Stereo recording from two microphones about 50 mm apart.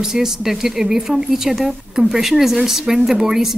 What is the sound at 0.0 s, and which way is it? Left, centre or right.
Speech, centre.